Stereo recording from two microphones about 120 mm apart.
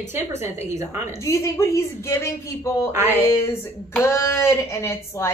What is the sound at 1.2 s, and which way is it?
Speech, 25° left (ahead or behind).